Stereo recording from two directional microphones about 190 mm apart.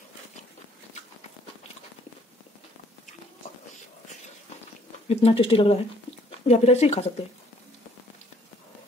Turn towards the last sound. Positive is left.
turn(degrees=35)  # may be behind; listen again after turning